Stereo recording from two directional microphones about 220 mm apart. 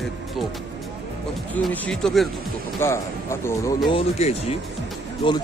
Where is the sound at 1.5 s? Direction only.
5° left (ahead or behind).